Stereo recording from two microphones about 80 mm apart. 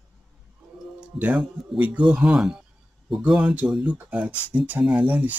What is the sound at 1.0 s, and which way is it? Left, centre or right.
Speech, centre.